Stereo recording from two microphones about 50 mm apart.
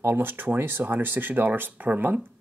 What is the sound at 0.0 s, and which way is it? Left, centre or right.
Speech, right.